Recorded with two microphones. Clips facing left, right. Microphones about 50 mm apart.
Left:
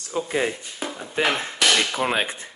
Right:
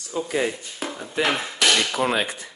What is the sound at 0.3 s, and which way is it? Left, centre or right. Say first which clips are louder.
Speech: even; left.